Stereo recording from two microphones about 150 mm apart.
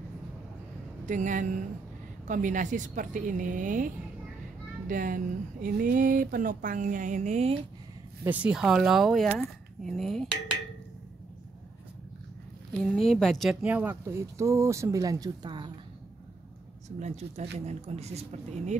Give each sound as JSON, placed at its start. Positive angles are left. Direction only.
{"t": 1.0, "sound": "speech", "side_deg": -55}
{"t": 8.2, "sound": "speech", "side_deg": -10}
{"t": 12.8, "sound": "speech", "side_deg": 5}
{"t": 17.0, "sound": "speech", "side_deg": -45}